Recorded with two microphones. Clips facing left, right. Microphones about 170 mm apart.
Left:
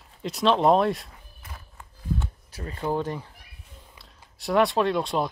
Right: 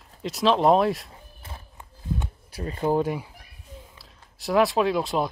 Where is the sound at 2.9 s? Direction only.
10° right (ahead or behind).